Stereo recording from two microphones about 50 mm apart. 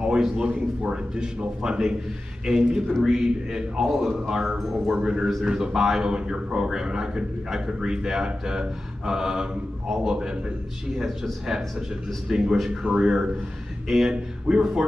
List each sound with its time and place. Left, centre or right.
0.0 s a man's voice: centre
5.0 s a man's voice: centre
12.3 s a man's voice: centre
13.8 s a man's voice: centre